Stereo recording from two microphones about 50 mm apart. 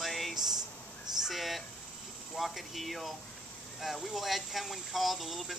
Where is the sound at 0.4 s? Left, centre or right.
Centre.